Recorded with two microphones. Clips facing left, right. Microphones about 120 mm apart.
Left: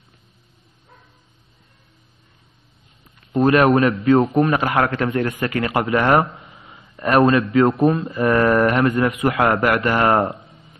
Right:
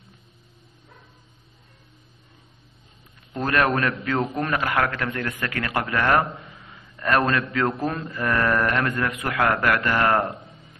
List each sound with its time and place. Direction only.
3.3 s a man's voice: 20° left (ahead or behind)
8.1 s a man's voice: 20° left (ahead or behind)